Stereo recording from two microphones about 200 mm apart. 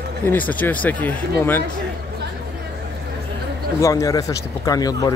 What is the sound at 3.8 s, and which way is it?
Speech, 15° left (ahead or behind).